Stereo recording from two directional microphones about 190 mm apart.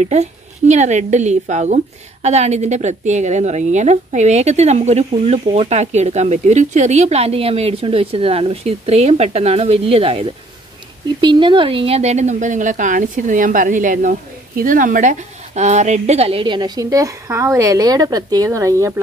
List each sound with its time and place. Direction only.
0.0 s a woman's voice: 35° right (ahead or behind); by 18.9 s 15° right (ahead or behind)